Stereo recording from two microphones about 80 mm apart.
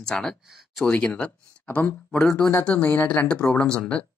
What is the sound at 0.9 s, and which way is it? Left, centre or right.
Speech, centre.